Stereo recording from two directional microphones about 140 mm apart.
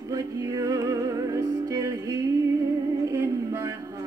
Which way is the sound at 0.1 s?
25° right (ahead or behind).